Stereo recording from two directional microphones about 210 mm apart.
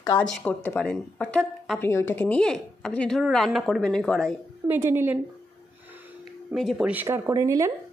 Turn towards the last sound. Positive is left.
turn(degrees=-15)  # may be behind; listen again after turning